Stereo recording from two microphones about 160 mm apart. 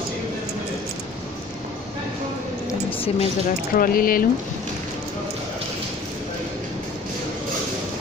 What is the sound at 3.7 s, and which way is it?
Speech, 60° left (ahead or behind).